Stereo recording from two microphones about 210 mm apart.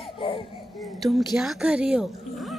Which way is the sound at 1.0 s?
Centre (ahead or behind).